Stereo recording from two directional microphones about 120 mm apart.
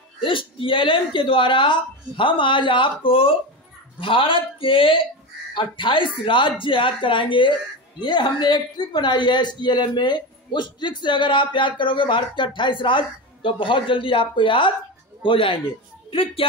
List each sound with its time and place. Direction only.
0.2 s speech: 45° left (ahead or behind)